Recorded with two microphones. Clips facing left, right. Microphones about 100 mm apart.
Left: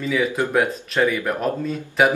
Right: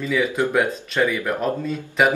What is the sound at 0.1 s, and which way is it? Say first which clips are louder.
Speech: even; centre (ahead or behind).